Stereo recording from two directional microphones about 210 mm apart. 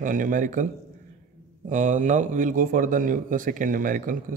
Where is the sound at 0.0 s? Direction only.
40° right (ahead or behind).